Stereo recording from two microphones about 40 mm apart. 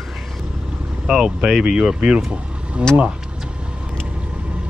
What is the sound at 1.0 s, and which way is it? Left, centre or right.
Speech, right.